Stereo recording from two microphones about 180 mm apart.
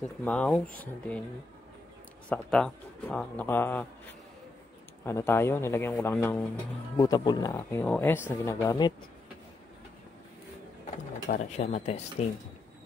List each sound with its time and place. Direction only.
0.0 s speech: 5° left (ahead or behind)
2.2 s speech: 5° left (ahead or behind)
5.0 s speech: 15° left (ahead or behind)
7.0 s speech: 20° left (ahead or behind)
11.2 s speech: 40° left (ahead or behind)